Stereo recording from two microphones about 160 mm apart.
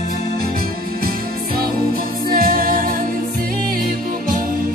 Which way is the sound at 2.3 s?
70° right (ahead or behind).